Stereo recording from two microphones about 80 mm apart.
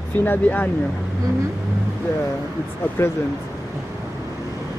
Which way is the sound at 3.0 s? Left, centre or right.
Left.